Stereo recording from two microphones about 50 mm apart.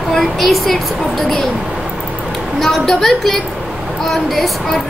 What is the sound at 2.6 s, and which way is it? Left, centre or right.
Speech, centre.